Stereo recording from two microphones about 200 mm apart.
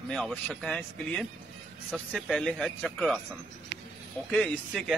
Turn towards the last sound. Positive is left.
turn(degrees=0)  # may be behind; listen again after turning